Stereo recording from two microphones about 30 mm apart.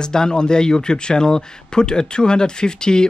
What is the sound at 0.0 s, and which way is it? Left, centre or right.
Speech, left.